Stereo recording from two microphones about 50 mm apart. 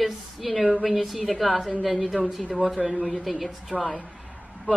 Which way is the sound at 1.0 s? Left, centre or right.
Centre.